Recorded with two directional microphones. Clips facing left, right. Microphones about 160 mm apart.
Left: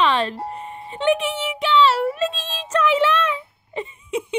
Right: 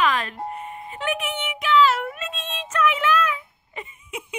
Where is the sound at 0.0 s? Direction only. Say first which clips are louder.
Left 3 dB; 30° left (ahead or behind).